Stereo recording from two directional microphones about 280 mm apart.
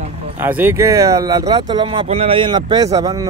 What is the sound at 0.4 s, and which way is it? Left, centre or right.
Speech, centre.